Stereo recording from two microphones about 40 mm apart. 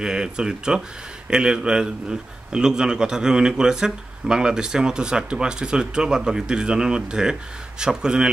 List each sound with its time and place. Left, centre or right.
0.0 s a man's voice: centre